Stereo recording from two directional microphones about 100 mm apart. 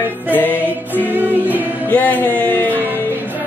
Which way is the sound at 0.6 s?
20° right (ahead or behind).